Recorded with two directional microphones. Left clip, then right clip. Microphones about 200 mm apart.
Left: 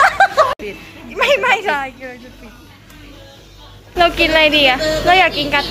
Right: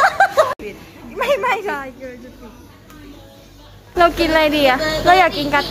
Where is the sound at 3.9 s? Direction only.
25° right (ahead or behind).